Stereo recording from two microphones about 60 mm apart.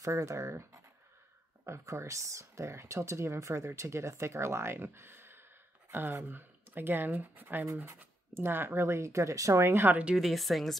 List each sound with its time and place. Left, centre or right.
0.0 s speech: right
9.6 s speech: right
10.1 s a woman's voice: centre